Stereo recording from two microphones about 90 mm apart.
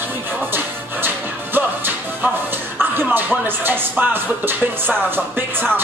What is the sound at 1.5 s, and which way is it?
Music, 20° right (ahead or behind).